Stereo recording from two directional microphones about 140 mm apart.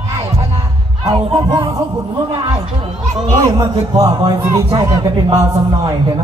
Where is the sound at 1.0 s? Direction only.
40° right (ahead or behind).